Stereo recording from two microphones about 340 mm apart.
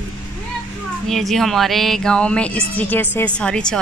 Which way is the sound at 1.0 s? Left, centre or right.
Centre.